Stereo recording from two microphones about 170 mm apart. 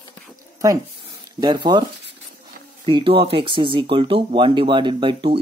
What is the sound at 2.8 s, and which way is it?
Speech, 30° right (ahead or behind).